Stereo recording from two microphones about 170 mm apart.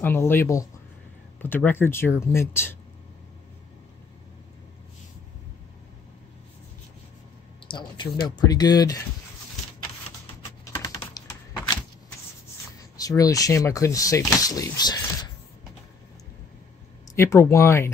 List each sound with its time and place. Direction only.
0.0 s speech: 15° left (ahead or behind)
7.6 s speech: 25° left (ahead or behind)
10.6 s typing: 15° left (ahead or behind)
12.9 s speech: 20° left (ahead or behind)
17.1 s speech: 15° left (ahead or behind)